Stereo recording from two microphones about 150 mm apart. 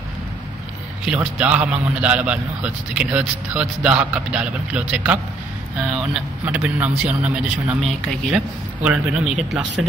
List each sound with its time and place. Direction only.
1.0 s a man's voice: 10° right (ahead or behind)